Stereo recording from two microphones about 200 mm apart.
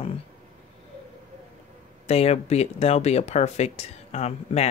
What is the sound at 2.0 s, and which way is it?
Speech, 30° left (ahead or behind).